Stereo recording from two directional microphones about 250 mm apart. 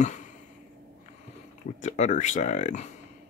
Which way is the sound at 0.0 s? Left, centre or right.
Left.